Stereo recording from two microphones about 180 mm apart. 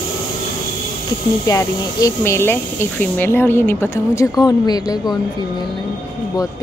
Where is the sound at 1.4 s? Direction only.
15° left (ahead or behind).